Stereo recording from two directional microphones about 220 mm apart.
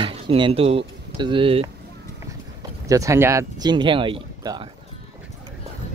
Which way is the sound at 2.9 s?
15° right (ahead or behind).